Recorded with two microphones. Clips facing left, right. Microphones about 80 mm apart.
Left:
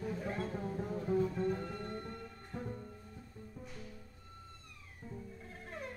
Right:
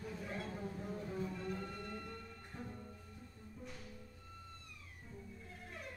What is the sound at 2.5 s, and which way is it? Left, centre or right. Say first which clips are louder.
Music: left 6 dB; left.